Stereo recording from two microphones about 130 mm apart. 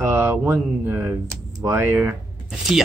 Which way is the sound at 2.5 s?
Centre (ahead or behind).